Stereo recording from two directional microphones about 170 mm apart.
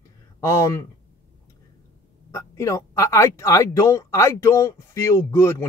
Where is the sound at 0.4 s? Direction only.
15° left (ahead or behind).